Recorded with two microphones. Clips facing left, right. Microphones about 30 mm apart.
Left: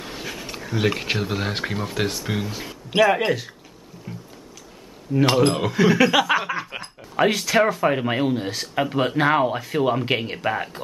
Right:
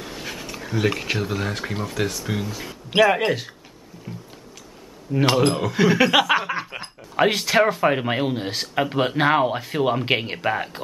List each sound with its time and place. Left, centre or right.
0.2 s dog: centre
0.7 s speech: centre
2.9 s speech: centre
5.1 s speech: centre
5.8 s speech: right
10.0 s speech: centre